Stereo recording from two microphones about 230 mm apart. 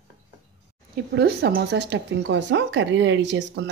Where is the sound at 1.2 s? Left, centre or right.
Right.